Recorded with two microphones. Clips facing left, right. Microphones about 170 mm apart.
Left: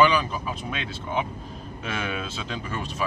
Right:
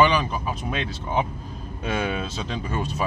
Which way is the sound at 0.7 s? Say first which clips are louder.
Right 5 dB; 45° right (ahead or behind).